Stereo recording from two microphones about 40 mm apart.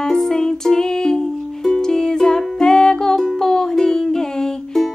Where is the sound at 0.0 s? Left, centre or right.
Centre.